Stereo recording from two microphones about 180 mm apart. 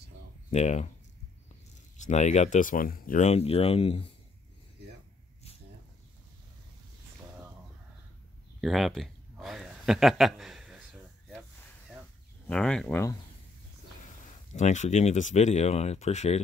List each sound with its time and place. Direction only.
0.5 s speech: 40° left (ahead or behind)
2.0 s speech: 40° left (ahead or behind)
8.5 s a sound: centre (ahead or behind)
12.4 s speech: 5° left (ahead or behind)
14.5 s speech: 40° left (ahead or behind)